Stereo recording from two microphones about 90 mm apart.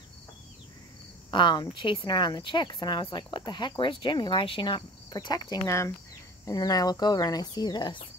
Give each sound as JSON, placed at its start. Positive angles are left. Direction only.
{"t": 1.3, "sound": "speech", "side_deg": 55}
{"t": 5.7, "sound": "speech", "side_deg": 35}
{"t": 6.4, "sound": "speech", "side_deg": 45}